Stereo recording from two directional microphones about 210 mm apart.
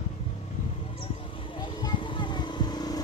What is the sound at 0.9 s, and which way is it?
Vehicle, 25° left (ahead or behind).